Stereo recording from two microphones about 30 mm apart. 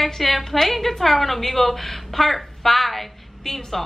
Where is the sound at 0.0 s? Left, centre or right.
Centre.